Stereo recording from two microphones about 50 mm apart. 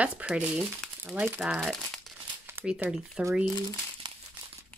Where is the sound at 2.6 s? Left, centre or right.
Centre.